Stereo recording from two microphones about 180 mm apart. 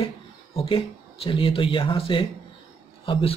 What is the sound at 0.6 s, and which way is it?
Speech, 30° left (ahead or behind).